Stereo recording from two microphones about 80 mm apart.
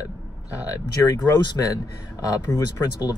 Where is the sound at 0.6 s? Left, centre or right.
Left.